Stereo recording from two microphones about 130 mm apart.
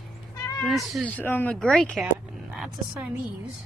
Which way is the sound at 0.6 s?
Centre (ahead or behind).